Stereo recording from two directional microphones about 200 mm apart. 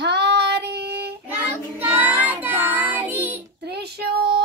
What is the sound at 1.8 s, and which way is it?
Child singing, 10° right (ahead or behind).